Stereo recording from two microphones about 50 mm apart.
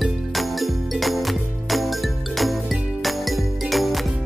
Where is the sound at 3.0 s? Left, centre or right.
Centre.